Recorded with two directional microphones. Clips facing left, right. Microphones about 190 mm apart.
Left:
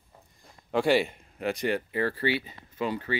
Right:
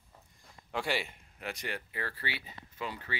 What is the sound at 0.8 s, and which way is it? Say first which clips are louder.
Speech: left 13 dB; 35° left (ahead or behind).